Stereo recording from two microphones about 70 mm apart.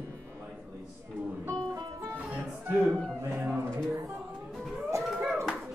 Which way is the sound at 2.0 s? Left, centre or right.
Right.